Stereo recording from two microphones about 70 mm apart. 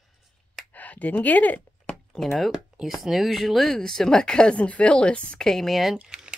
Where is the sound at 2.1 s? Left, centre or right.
Centre.